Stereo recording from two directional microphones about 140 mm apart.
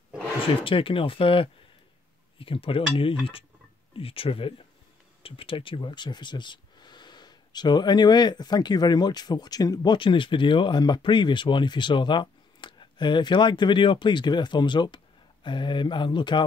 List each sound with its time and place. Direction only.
0.7 s speech: 40° left (ahead or behind)